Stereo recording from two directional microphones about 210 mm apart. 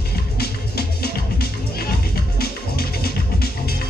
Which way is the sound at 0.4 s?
45° left (ahead or behind).